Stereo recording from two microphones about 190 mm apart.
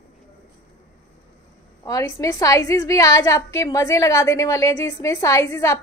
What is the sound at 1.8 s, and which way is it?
A woman's voice, 20° left (ahead or behind).